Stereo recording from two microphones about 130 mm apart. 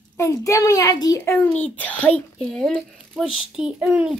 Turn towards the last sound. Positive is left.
turn(degrees=-10)  # may be behind; listen again after turning